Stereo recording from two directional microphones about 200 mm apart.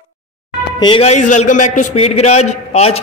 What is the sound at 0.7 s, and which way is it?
A man's voice, 25° left (ahead or behind).